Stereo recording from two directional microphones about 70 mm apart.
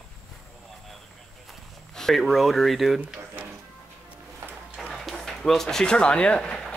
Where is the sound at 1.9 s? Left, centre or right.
Centre.